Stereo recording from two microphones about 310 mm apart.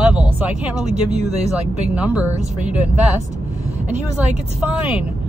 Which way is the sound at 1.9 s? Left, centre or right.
Centre.